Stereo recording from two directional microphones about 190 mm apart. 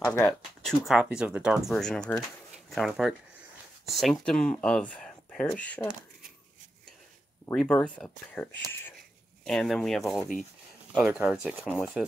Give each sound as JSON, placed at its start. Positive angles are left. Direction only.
{"t": 0.0, "sound": "speech", "side_deg": 10}
{"t": 7.5, "sound": "speech", "side_deg": 5}